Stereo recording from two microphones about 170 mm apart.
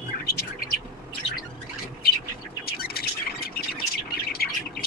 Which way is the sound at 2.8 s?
65° left (ahead or behind).